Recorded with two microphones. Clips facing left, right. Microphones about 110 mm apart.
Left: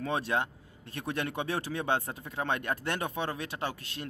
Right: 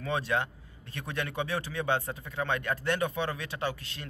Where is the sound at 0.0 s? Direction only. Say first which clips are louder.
Even; 40° left (ahead or behind).